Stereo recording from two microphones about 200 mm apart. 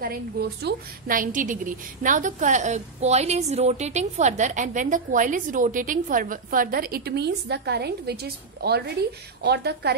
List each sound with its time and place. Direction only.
0.0 s a woman's voice: 50° right (ahead or behind)